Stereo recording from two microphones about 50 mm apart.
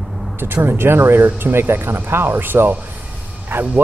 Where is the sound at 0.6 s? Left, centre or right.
Right.